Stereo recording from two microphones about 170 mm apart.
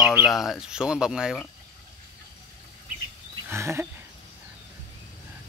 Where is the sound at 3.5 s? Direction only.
15° right (ahead or behind).